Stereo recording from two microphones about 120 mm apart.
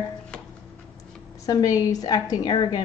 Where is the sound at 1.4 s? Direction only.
30° left (ahead or behind).